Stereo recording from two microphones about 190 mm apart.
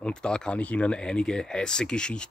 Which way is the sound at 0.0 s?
5° left (ahead or behind).